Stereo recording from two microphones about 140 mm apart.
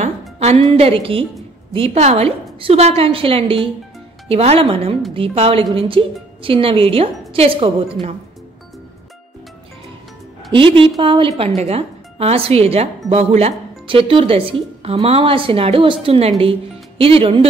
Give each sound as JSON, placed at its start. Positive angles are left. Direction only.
{"t": 0.4, "sound": "a woman's voice", "side_deg": -50}
{"t": 10.5, "sound": "a woman's voice", "side_deg": -40}